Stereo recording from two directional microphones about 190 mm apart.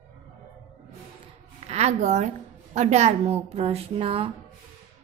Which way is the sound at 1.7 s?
35° right (ahead or behind).